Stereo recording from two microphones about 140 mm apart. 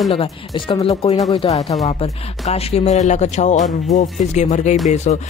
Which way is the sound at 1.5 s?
50° left (ahead or behind).